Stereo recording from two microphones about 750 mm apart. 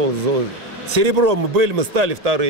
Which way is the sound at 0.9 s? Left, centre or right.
Right.